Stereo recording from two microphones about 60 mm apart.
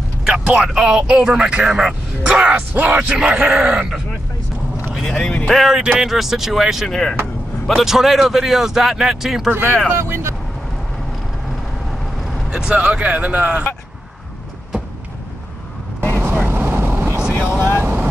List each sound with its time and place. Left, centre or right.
0.2 s a man's voice: centre
2.7 s speech: right
3.1 s a man's voice: centre
5.0 s speech: centre
5.5 s speech: centre
5.8 s a man's voice: centre
6.0 s speech: centre
6.9 s speech: centre
7.7 s speech: centre
9.5 s speech: right
9.9 s speech: right
12.4 s speech: centre
16.3 s vehicle: right
17.3 s vehicle: left